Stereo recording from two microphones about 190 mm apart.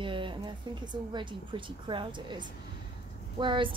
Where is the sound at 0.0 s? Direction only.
25° right (ahead or behind).